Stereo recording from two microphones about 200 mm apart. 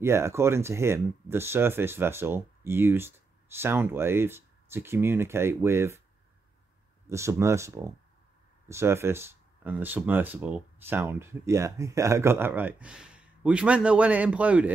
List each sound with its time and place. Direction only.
0.0 s speech: 15° right (ahead or behind)
7.1 s speech: 15° right (ahead or behind)